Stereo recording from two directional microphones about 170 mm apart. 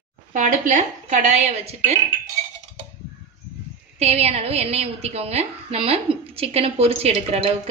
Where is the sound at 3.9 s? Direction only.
40° right (ahead or behind).